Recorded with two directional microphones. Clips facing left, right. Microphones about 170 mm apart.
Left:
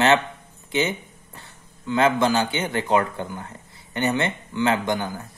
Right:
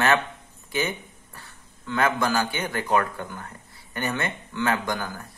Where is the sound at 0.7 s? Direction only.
20° left (ahead or behind).